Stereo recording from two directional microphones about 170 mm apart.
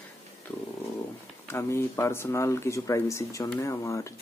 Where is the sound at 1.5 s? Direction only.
15° left (ahead or behind).